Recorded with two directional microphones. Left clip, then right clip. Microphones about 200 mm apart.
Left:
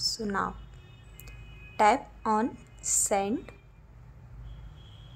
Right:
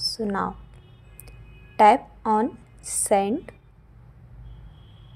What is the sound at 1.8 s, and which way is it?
A woman's voice, 15° right (ahead or behind).